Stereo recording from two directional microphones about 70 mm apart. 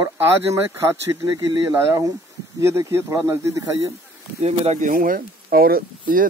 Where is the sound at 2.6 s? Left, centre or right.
Right.